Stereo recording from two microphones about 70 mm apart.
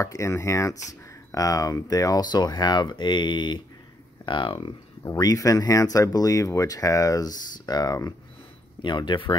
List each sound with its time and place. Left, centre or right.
0.0 s speech: left
5.1 s speech: left
8.8 s speech: left